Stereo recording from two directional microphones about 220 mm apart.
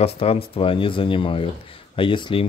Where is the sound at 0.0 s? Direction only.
25° left (ahead or behind).